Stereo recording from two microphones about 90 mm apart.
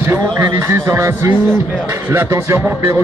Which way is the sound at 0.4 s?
45° right (ahead or behind).